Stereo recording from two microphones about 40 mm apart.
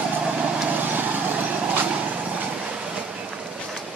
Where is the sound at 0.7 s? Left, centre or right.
Right.